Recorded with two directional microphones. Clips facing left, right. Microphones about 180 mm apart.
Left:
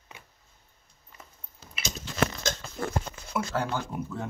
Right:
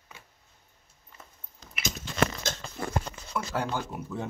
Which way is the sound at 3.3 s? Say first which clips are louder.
Left 3 dB; 10° left (ahead or behind).